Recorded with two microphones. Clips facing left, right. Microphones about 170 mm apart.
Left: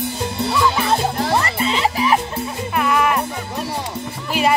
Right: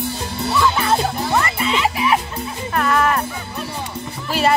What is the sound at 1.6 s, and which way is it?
Music, 35° left (ahead or behind).